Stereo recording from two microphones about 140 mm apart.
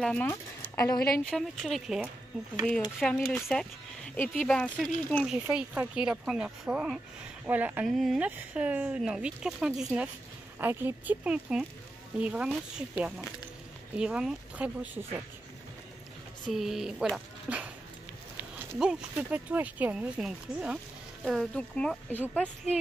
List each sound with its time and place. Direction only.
0.0 s speech: 10° left (ahead or behind)
0.3 s speech: 25° left (ahead or behind)
1.2 s speech: centre (ahead or behind)
10.6 s speech: 15° right (ahead or behind)
16.4 s speech: 5° right (ahead or behind)
18.8 s speech: 5° right (ahead or behind)
21.5 s speech: 10° left (ahead or behind)